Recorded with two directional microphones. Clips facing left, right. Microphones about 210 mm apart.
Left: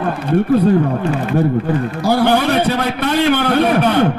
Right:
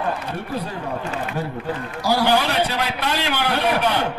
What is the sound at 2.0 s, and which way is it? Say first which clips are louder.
A man's voice: left 5 dB; 55° left (ahead or behind).